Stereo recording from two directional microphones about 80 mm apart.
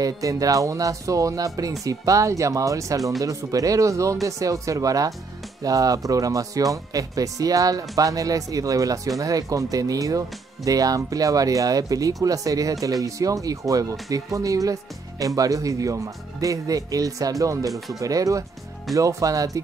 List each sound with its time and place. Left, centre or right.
0.0 s speech: right
17.6 s speech: centre
17.9 s speech: right